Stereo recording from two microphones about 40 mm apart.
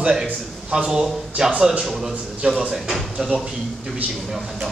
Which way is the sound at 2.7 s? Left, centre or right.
Centre.